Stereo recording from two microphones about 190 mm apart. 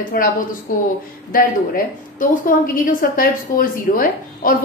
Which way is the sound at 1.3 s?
45° left (ahead or behind).